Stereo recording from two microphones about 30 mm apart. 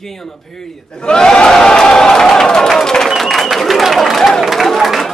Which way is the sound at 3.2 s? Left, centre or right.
Centre.